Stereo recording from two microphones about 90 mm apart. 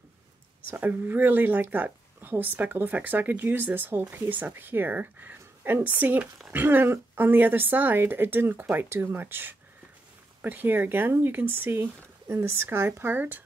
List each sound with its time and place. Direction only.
0.7 s speech: 20° right (ahead or behind)